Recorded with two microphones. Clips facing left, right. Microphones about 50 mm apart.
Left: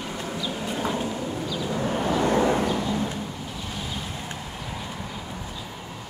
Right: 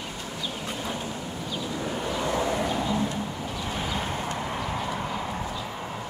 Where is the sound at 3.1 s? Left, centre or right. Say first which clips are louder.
Right 2 dB; right.